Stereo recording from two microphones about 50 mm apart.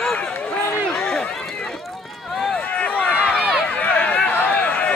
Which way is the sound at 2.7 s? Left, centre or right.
Left.